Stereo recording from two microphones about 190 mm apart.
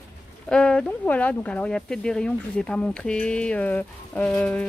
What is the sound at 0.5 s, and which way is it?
Speech, 5° left (ahead or behind).